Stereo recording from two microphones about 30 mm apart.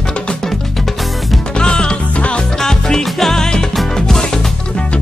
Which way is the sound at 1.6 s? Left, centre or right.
Left.